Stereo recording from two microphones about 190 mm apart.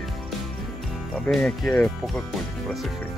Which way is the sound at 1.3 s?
5° left (ahead or behind).